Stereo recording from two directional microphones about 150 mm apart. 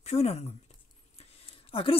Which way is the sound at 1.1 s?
40° left (ahead or behind).